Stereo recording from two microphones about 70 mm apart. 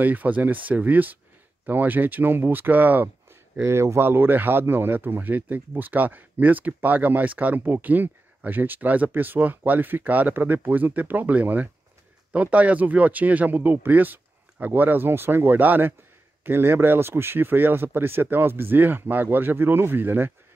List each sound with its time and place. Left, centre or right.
0.0 s speech: right
3.6 s speech: right